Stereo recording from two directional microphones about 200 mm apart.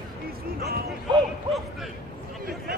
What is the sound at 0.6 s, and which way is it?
Music, 50° right (ahead or behind).